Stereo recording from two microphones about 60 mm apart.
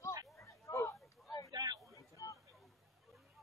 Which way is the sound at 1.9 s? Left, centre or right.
Left.